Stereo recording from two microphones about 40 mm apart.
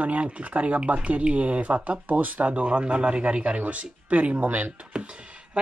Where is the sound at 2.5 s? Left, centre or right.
Right.